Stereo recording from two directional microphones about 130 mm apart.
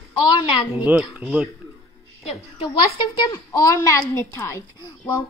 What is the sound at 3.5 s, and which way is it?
A woman's voice, 25° left (ahead or behind).